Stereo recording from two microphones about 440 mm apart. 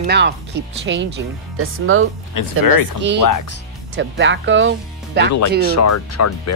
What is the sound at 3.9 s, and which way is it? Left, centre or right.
Speech, right.